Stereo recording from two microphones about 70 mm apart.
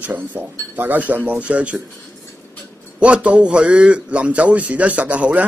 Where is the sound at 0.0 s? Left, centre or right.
Right.